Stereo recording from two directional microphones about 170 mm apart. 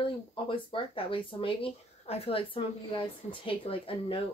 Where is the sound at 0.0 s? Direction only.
30° left (ahead or behind).